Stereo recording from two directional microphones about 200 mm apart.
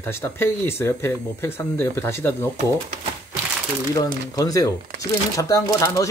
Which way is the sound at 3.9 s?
20° left (ahead or behind).